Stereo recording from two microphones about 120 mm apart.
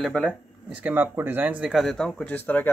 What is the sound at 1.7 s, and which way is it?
Speech, centre (ahead or behind).